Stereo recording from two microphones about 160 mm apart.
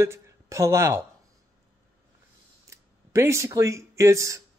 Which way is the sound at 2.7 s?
20° right (ahead or behind).